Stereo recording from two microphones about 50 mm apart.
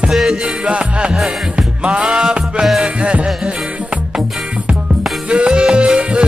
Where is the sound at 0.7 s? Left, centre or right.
Right.